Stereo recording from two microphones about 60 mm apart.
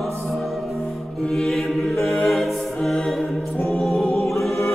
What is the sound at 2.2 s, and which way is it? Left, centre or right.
Choir, centre.